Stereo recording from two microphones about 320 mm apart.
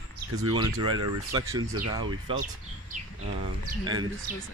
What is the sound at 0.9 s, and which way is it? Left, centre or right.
Speech, centre.